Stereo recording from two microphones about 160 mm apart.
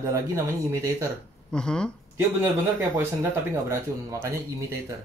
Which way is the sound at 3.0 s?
15° right (ahead or behind).